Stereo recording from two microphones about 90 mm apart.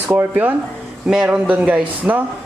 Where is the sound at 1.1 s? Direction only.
10° right (ahead or behind).